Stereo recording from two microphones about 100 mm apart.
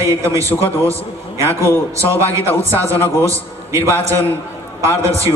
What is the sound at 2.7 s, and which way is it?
Speech, 25° right (ahead or behind).